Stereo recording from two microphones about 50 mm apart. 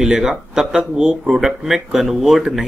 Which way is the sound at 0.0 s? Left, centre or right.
Centre.